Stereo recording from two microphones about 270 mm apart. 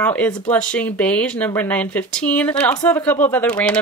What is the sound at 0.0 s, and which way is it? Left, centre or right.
Speech, centre.